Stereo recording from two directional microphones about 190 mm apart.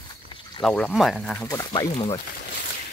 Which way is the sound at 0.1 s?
25° left (ahead or behind).